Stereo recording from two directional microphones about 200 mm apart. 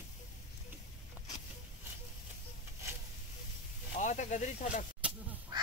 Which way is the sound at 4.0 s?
40° left (ahead or behind).